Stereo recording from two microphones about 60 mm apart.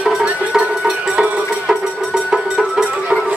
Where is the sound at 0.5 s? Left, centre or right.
Centre.